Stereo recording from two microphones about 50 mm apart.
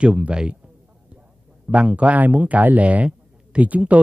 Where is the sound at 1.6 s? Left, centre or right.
Right.